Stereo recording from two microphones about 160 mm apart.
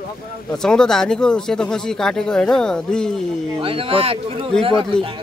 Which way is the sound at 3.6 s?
35° right (ahead or behind).